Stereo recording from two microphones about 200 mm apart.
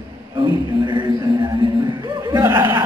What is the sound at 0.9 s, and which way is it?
Music, 20° right (ahead or behind).